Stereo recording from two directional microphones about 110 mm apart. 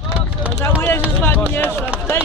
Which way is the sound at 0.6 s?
20° left (ahead or behind).